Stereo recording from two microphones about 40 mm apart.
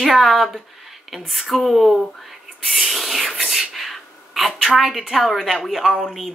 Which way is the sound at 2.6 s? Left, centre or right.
Centre.